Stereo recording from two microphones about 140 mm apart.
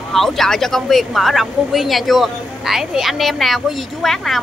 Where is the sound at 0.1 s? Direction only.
Centre (ahead or behind).